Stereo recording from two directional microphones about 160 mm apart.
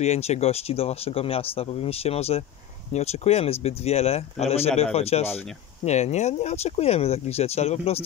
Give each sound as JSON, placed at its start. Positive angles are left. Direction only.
{"t": 0.0, "sound": "speech", "side_deg": 45}